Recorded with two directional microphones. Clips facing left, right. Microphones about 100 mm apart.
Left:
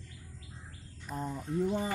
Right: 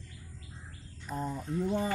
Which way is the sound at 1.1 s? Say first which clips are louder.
Right 1 dB; 20° right (ahead or behind).